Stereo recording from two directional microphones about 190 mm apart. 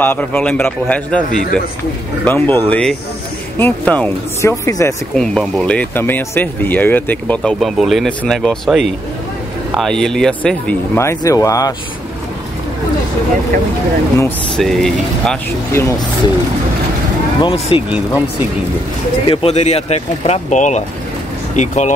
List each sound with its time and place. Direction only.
0.0 s speech: 10° left (ahead or behind)
1.3 s speech: 45° left (ahead or behind)
2.2 s speech: 10° left (ahead or behind)
5.1 s speech: 5° left (ahead or behind)
14.1 s speech: 15° left (ahead or behind)
14.6 s speech: centre (ahead or behind)
15.8 s speech: 15° left (ahead or behind)
17.4 s speech: 25° left (ahead or behind)
19.2 s speech: 30° left (ahead or behind)